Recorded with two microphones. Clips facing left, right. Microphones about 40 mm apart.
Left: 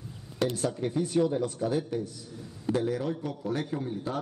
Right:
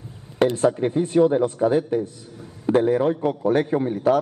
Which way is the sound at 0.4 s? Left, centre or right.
Right.